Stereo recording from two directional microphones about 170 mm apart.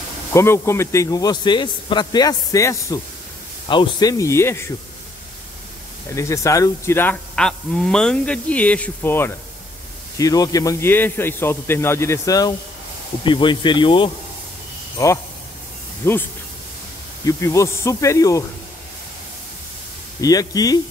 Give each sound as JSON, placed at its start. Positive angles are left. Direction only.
{"t": 0.3, "sound": "a man's voice", "side_deg": 15}
{"t": 6.1, "sound": "a man's voice", "side_deg": 15}
{"t": 15.0, "sound": "a man's voice", "side_deg": 20}
{"t": 20.2, "sound": "a man's voice", "side_deg": 20}